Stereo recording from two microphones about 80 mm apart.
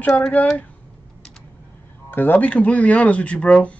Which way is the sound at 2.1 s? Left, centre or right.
Left.